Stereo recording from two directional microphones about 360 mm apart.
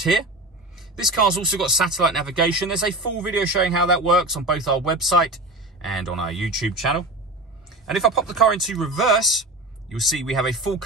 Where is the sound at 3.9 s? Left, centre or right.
Centre.